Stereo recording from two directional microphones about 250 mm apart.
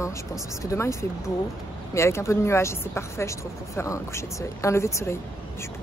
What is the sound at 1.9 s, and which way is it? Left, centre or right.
Speech, centre.